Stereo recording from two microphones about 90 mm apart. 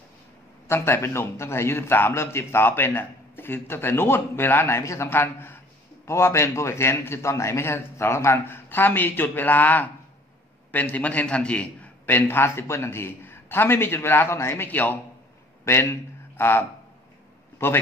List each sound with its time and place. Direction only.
0.7 s a man's voice: 30° left (ahead or behind)